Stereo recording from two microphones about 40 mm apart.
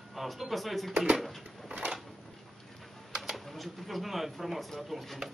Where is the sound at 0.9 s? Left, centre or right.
Right.